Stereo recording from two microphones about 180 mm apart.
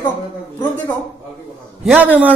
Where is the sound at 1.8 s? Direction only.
10° right (ahead or behind).